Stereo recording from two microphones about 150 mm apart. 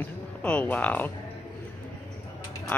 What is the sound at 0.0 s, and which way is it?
Music, 10° left (ahead or behind).